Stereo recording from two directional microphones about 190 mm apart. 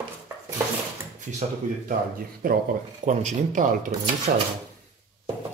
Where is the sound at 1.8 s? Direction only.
45° right (ahead or behind).